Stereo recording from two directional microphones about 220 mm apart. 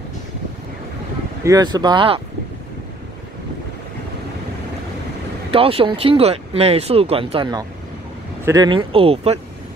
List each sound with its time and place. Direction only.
1.4 s speech: 15° right (ahead or behind)
5.5 s speech: 25° right (ahead or behind)